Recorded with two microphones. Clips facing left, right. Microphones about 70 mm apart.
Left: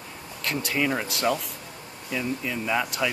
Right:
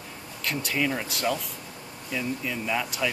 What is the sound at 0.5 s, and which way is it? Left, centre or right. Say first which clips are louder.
Speech: left 1 dB; centre.